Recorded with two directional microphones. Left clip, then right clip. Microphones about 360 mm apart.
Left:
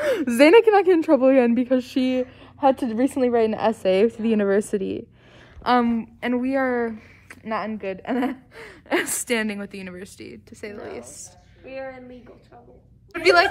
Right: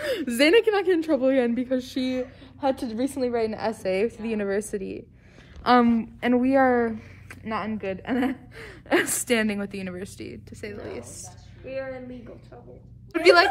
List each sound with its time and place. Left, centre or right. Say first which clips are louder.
0.0 s a woman's voice: left 5 dB; left
4.7 s speech: left 6 dB; left
5.6 s speech: right 1 dB; centre